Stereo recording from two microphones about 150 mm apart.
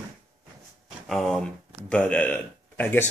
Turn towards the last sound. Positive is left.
turn(degrees=10)  # may be behind; listen again after turning